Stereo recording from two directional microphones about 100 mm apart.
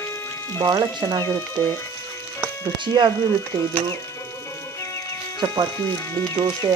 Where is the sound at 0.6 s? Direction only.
45° right (ahead or behind).